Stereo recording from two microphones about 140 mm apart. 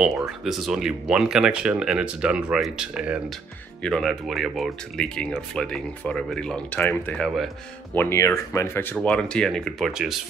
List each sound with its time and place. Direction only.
0.0 s speech: centre (ahead or behind)
3.8 s speech: 5° left (ahead or behind)
7.9 s speech: 15° left (ahead or behind)
9.0 s speech: 5° left (ahead or behind)